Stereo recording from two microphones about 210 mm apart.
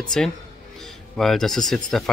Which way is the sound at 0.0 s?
Centre (ahead or behind).